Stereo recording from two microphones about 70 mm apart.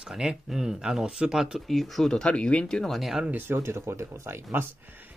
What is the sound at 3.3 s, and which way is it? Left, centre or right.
Speech, right.